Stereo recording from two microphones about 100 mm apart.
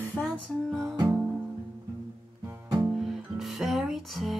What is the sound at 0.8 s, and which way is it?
Music, 30° right (ahead or behind).